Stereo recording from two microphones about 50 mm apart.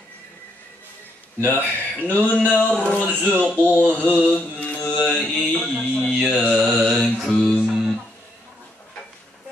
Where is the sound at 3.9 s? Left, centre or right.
Left.